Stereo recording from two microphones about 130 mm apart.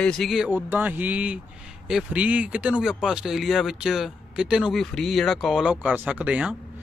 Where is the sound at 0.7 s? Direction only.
15° right (ahead or behind).